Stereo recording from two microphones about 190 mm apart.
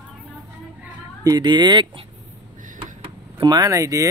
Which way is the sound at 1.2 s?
20° right (ahead or behind).